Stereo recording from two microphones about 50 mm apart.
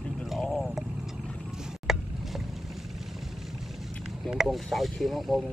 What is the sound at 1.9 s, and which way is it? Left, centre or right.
Vehicle, centre.